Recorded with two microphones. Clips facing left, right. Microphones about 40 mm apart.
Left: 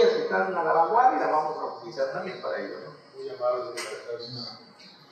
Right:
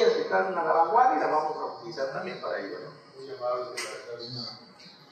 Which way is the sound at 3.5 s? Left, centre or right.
Centre.